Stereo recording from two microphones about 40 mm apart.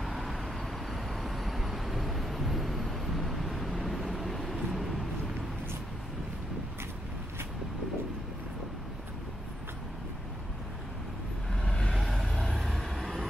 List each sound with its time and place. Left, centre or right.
0.0 s vehicle: centre
11.6 s vehicle: left
11.9 s vehicle: centre